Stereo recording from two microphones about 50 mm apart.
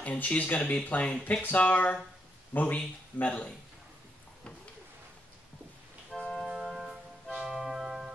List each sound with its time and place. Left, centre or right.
0.0 s speech: left
6.1 s organ: centre
6.4 s music: centre
6.7 s music: centre
7.3 s organ: centre